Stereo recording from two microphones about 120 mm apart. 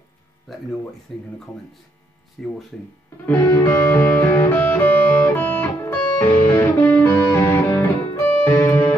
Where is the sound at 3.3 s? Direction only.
15° left (ahead or behind).